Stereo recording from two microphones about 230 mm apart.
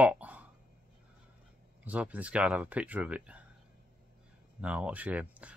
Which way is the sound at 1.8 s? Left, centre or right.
Centre.